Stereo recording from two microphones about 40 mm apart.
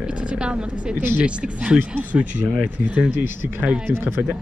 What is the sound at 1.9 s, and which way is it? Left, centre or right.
Speech, right.